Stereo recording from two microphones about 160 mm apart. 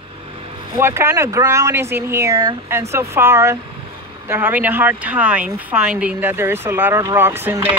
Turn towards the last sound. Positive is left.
turn(degrees=-15)  # may be behind; listen again after turning